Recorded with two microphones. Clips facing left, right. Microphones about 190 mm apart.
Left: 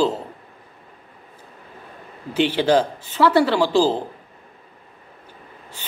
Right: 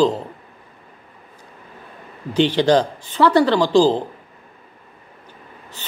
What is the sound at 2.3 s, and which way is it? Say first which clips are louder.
Speech: right 2 dB; 5° left (ahead or behind).